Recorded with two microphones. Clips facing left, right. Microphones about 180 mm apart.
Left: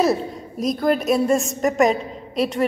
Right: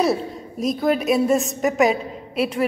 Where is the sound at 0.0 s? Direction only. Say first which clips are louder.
Left 1 dB; centre (ahead or behind).